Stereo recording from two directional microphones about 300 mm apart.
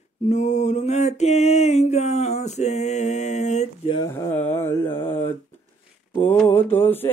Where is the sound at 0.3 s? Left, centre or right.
Left.